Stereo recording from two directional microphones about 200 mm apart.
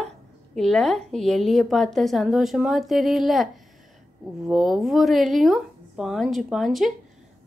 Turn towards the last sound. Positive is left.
turn(degrees=0)  # may be behind; listen again after turning